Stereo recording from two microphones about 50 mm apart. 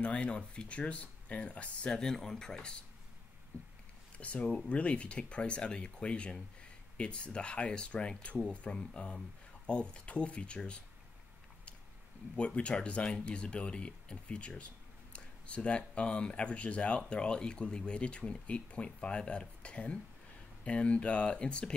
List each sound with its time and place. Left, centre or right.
0.0 s speech: left
2.0 s speech: centre
4.2 s speech: left
12.4 s speech: left